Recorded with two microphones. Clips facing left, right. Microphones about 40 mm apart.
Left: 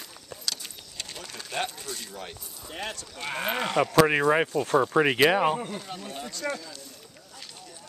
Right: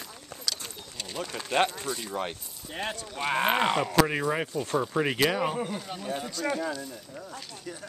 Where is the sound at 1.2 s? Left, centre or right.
Centre.